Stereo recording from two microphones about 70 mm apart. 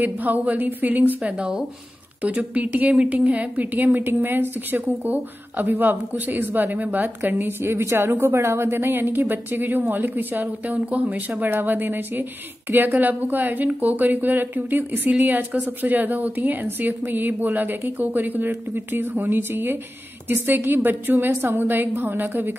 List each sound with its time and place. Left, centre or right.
0.0 s a woman's voice: right